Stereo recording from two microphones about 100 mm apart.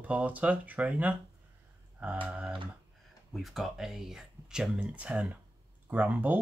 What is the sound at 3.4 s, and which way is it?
Speech, centre (ahead or behind).